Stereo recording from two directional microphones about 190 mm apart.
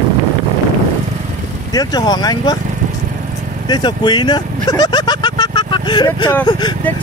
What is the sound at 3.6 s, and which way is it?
Speech, 20° left (ahead or behind).